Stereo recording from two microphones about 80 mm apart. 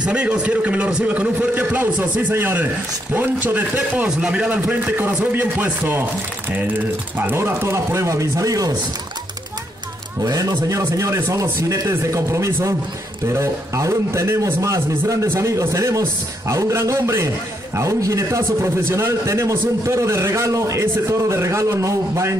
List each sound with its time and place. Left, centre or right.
0.0 s a man's voice: centre
7.2 s a man's voice: right
10.2 s a man's voice: right